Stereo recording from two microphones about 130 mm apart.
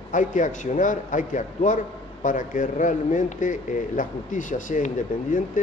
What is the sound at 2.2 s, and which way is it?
A man's voice, 90° left.